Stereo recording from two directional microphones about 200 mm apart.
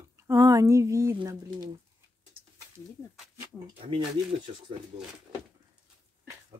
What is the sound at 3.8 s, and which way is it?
Speech, 25° right (ahead or behind).